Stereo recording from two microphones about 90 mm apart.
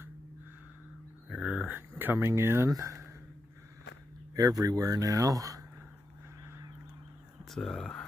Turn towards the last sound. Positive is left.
turn(degrees=10)  # may be behind; listen again after turning